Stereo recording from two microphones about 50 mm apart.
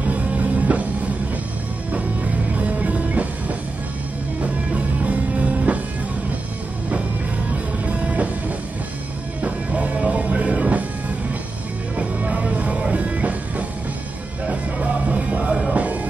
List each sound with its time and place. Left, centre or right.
0.0 s music: right
1.9 s music: right
5.0 s music: right
7.8 s music: right
12.0 s music: right